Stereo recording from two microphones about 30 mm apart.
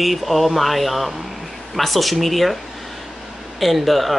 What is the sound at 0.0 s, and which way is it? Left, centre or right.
Speech, centre.